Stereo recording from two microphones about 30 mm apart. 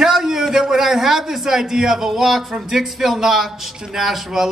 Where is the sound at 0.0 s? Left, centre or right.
Centre.